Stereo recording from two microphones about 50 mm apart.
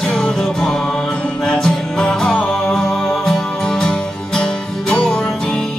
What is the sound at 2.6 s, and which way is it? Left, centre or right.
Music, centre.